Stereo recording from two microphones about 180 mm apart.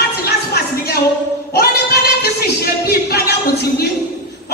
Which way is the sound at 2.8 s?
65° left (ahead or behind).